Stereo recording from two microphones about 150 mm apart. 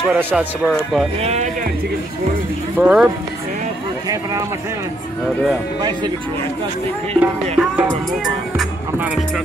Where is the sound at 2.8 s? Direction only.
5° right (ahead or behind).